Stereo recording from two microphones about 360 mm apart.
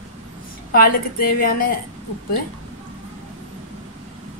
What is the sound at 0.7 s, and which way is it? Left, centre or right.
Speech, left.